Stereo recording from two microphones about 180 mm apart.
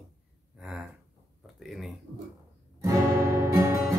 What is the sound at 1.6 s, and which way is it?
Speech, centre (ahead or behind).